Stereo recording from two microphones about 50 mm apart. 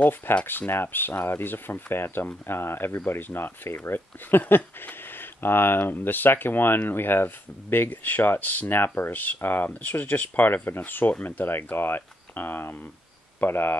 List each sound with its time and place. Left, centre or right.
0.0 s speech: left
0.5 s speech: left